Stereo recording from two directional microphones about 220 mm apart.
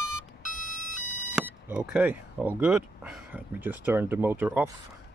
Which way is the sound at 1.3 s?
5° right (ahead or behind).